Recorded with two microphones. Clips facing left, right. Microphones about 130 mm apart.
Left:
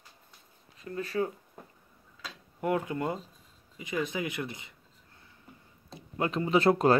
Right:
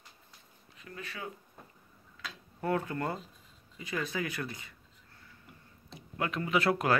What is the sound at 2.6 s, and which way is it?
Speech, 15° left (ahead or behind).